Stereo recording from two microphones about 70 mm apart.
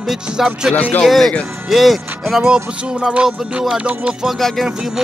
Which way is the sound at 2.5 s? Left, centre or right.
Centre.